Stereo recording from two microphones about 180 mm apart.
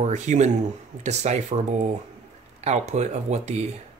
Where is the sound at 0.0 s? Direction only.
40° right (ahead or behind).